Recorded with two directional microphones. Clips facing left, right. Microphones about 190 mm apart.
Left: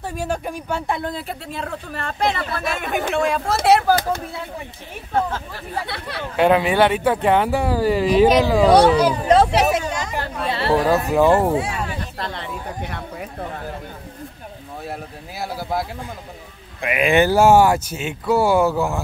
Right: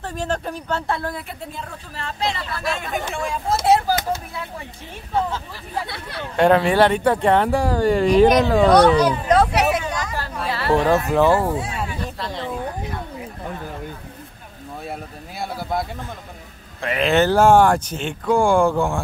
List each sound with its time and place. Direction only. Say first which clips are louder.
0.0 s speech: even; 10° left (ahead or behind)
1.5 s speech: left 6 dB; 65° left (ahead or behind)
3.1 s speech: left 4 dB; 70° left (ahead or behind)
6.3 s speech: right 1 dB; 5° left (ahead or behind)
9.2 s speech: left 2 dB; 30° left (ahead or behind)
10.7 s speech: right 1 dB; 5° left (ahead or behind)
12.2 s a sound: right 2 dB; 60° left (ahead or behind)
14.9 s a sound: left 2 dB; 5° left (ahead or behind)
16.8 s speech: left 1 dB; 15° left (ahead or behind)